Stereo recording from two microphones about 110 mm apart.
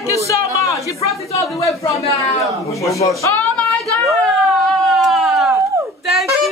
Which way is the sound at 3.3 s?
10° left (ahead or behind).